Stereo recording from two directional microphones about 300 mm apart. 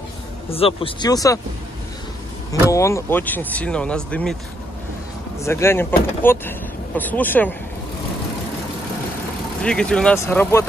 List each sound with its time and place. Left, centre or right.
0.5 s speech: centre
2.7 s speech: centre
5.4 s speech: centre
9.6 s speech: centre